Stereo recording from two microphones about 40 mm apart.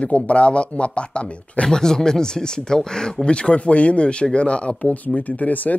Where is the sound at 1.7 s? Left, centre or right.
Centre; by 5.7 s left.